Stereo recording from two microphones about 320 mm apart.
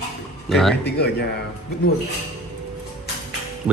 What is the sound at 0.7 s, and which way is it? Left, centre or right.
Speech, left.